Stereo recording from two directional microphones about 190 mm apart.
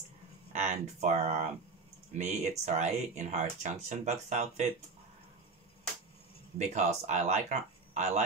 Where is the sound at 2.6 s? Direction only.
35° right (ahead or behind).